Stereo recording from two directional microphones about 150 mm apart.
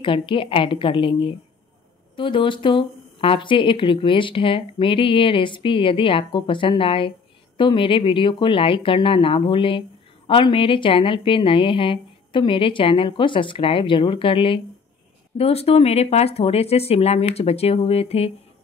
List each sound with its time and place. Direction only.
0.0 s speech: 35° left (ahead or behind)